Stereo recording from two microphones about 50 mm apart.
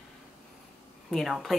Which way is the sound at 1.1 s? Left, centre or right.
Centre.